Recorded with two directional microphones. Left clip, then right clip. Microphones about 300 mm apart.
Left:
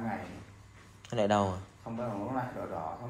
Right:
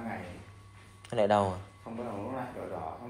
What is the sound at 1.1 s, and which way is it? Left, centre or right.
Speech, centre.